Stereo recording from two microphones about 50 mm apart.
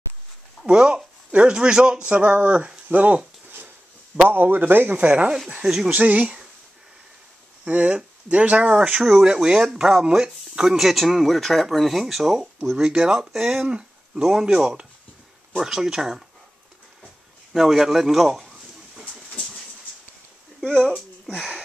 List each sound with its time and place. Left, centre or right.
0.7 s speech: centre
2.9 s speech: right
3.4 s a sound: right
4.3 s speech: right
5.6 s speech: centre
5.9 s speech: right
7.6 s speech: right
9.0 s speech: centre
13.7 s a sound: centre
14.2 s speech: centre
17.5 s a sound: centre
19.3 s dog: centre